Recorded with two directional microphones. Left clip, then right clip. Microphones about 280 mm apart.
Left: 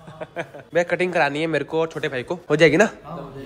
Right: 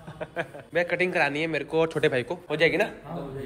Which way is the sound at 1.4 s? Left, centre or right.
Left.